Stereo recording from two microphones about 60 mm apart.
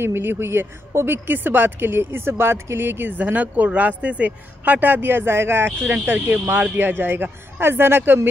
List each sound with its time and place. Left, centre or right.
0.0 s a woman's voice: right